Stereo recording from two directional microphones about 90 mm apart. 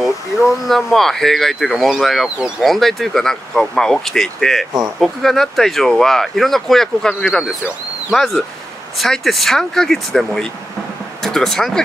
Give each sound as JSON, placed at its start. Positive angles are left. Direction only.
{"t": 0.7, "sound": "speech", "side_deg": 0}
{"t": 2.2, "sound": "speech", "side_deg": -10}
{"t": 2.6, "sound": "speech", "side_deg": 0}